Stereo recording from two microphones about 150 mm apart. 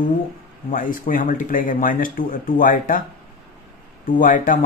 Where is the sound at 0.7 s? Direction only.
65° left (ahead or behind).